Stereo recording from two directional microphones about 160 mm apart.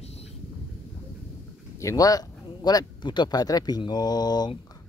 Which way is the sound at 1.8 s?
20° left (ahead or behind).